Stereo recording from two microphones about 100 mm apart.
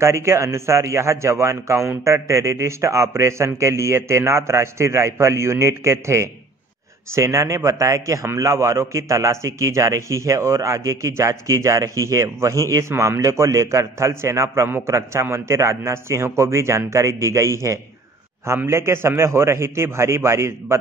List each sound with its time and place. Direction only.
0.0 s a man's voice: 30° right (ahead or behind)